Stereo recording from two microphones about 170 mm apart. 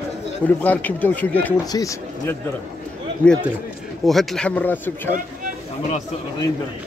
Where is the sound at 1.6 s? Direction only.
20° left (ahead or behind).